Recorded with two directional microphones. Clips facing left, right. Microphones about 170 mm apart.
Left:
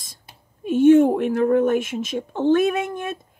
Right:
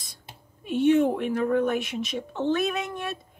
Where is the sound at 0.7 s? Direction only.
45° left (ahead or behind).